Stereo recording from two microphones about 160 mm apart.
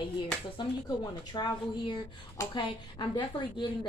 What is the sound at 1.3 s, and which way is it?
A woman's voice, 30° left (ahead or behind).